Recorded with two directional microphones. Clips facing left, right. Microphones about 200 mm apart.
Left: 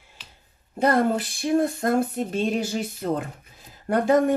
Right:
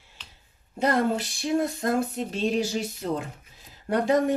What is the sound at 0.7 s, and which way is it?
Speech, 50° left (ahead or behind).